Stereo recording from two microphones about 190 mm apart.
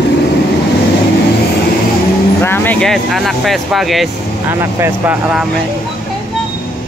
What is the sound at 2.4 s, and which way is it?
Speech, 10° left (ahead or behind).